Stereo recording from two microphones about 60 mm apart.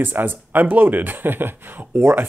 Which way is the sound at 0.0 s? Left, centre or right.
Right.